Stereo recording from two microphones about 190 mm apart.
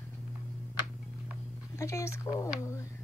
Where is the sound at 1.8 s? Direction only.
15° left (ahead or behind).